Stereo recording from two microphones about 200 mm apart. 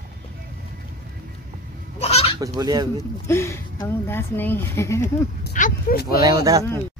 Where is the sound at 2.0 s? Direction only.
30° left (ahead or behind).